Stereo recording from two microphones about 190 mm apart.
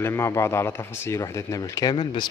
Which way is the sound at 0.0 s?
15° left (ahead or behind).